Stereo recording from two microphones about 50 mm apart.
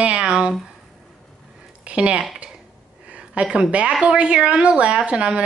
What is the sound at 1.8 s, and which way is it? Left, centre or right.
Speech, right.